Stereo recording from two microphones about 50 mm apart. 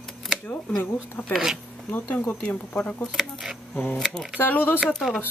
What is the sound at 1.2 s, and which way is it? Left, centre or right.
Speech, centre.